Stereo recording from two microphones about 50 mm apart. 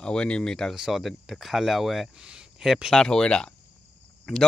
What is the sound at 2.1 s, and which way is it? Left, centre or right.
Speech, centre.